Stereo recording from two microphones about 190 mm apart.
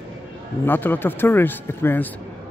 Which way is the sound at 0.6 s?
10° left (ahead or behind).